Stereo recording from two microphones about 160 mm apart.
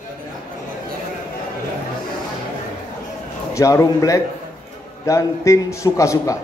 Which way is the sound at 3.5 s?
20° left (ahead or behind).